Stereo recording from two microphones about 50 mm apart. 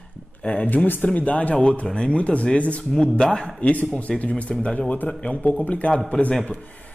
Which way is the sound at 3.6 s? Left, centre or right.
Left.